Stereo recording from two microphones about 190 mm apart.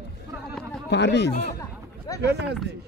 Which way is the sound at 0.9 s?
65° left (ahead or behind).